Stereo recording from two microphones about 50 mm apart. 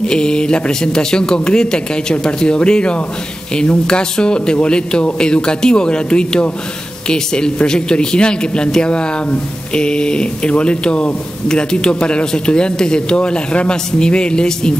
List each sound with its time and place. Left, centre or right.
0.0 s speech: centre